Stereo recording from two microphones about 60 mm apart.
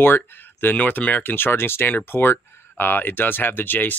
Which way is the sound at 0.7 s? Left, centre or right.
Left.